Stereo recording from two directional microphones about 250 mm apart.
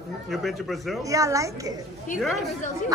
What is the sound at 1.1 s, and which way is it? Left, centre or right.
Speech, centre.